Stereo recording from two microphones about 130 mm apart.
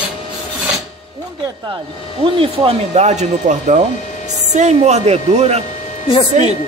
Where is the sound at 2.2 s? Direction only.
45° right (ahead or behind).